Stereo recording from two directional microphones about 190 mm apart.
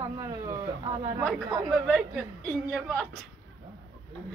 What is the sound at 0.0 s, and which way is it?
Speech, 15° right (ahead or behind).